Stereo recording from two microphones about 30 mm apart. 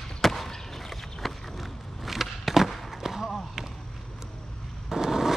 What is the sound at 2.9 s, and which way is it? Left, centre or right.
Basketball bounce, centre.